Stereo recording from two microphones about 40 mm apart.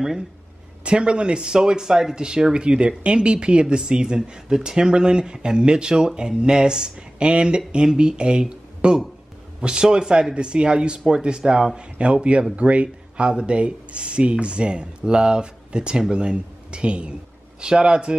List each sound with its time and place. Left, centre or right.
0.8 s a man's voice: right